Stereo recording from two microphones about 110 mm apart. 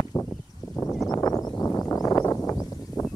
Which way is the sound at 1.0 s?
35° left (ahead or behind).